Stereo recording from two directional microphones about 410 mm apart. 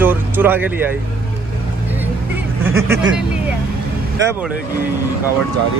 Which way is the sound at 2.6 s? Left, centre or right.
Centre.